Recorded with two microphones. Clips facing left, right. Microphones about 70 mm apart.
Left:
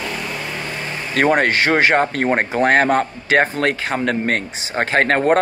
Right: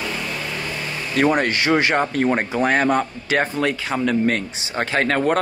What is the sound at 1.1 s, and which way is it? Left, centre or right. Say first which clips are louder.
Speech: left 3 dB; left.